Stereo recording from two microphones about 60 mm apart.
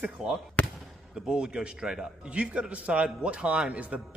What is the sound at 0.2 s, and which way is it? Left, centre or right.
A man's voice, centre.